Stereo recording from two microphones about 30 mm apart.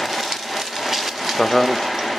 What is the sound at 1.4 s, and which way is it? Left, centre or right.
Frying, centre.